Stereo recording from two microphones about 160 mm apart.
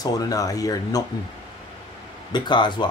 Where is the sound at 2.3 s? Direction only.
30° left (ahead or behind).